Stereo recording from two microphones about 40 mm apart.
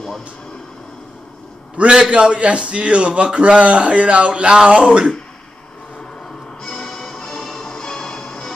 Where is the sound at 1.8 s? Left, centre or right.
Right.